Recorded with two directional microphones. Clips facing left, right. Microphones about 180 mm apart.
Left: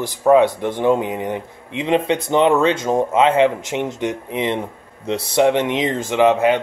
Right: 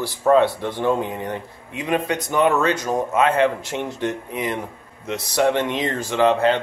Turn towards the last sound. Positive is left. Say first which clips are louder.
# left 3 dB
turn(degrees=15)  # may be behind; listen again after turning